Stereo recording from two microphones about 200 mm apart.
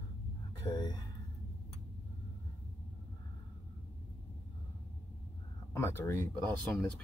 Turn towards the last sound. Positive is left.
turn(degrees=10)  # may be behind; listen again after turning